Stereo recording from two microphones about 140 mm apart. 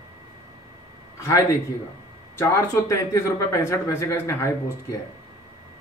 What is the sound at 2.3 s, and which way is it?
Speech, 15° left (ahead or behind).